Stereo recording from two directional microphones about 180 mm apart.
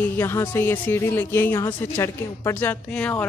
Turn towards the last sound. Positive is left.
turn(degrees=5)  # may be behind; listen again after turning